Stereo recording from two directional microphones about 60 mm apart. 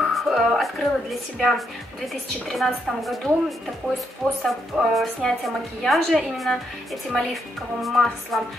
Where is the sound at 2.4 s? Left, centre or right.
Centre.